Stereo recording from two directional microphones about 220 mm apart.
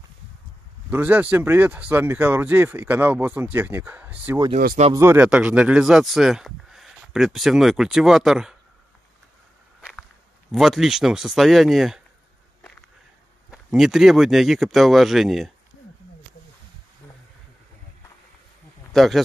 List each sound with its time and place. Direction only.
0.8 s speech: 10° right (ahead or behind)
4.6 s speech: 40° right (ahead or behind)
4.9 s speech: 10° right (ahead or behind)
9.8 s walk: 5° right (ahead or behind)
10.5 s speech: centre (ahead or behind)
13.5 s speech: centre (ahead or behind)
18.9 s speech: centre (ahead or behind)